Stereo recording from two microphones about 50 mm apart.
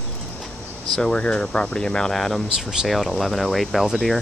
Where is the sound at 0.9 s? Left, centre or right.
Centre.